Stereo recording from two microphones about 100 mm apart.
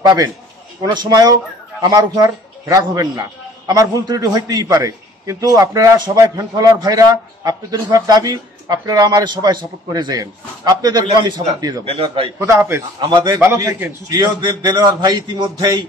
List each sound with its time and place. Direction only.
0.0 s a man's voice: 40° right (ahead or behind)
11.8 s a man's voice: 70° right (ahead or behind)
12.4 s a man's voice: 25° right (ahead or behind)
13.1 s a man's voice: 45° right (ahead or behind)